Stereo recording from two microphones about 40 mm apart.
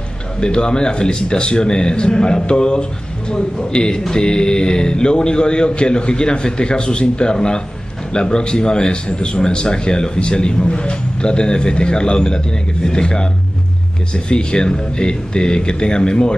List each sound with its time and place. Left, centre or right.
0.4 s a man's voice: centre